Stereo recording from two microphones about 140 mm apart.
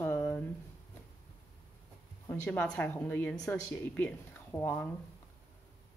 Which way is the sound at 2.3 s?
10° left (ahead or behind).